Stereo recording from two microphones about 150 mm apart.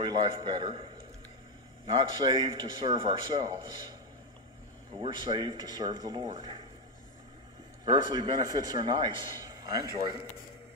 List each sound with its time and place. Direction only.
0.0 s a man's voice: 30° right (ahead or behind)
5.0 s speech: 30° right (ahead or behind)
7.8 s a man's voice: 30° right (ahead or behind)